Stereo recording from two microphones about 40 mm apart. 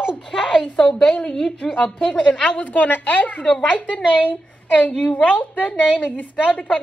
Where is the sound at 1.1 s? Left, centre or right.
Left.